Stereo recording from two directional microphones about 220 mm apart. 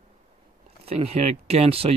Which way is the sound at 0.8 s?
25° right (ahead or behind).